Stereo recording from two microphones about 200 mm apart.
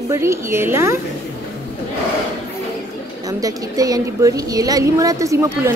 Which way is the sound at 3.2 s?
20° right (ahead or behind).